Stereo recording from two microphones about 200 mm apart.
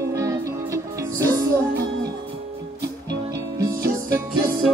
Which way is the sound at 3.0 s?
15° right (ahead or behind).